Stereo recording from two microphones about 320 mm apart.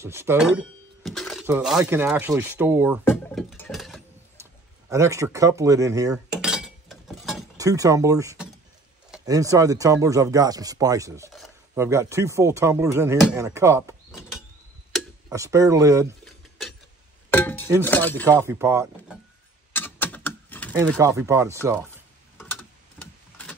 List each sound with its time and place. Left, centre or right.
0.0 s speech: centre
3.1 s a sound: centre
7.5 s speech: centre
16.3 s mechanisms: centre
17.3 s a sound: centre
17.8 s speech: centre
18.5 s speech: centre
19.7 s a sound: centre
21.0 s speech: centre